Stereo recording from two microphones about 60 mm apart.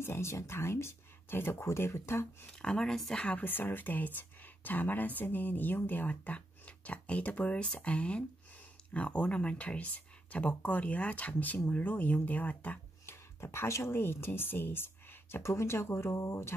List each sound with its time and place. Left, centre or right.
0.0 s speech: left
2.6 s speech: centre
3.3 s speech: left
13.0 s speech: left
15.3 s speech: left